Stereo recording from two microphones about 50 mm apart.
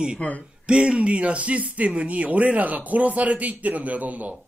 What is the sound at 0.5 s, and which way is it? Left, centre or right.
Speech, right.